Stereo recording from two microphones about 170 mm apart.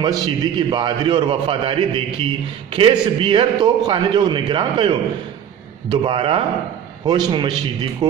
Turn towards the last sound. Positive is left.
turn(degrees=-25)  # may be behind; listen again after turning